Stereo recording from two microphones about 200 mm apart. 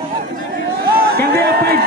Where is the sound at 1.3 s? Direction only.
50° right (ahead or behind).